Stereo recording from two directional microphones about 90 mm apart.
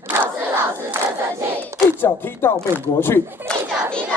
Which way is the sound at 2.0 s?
20° left (ahead or behind).